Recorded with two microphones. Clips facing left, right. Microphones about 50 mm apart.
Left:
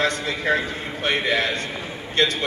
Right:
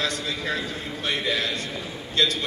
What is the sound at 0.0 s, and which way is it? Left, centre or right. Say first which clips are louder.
A man's voice: left 5 dB; left.